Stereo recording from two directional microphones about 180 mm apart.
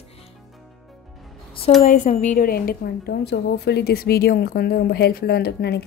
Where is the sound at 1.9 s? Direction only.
45° left (ahead or behind).